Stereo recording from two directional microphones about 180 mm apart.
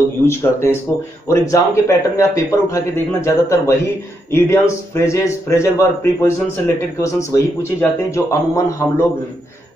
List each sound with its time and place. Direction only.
0.2 s a man's voice: 15° left (ahead or behind)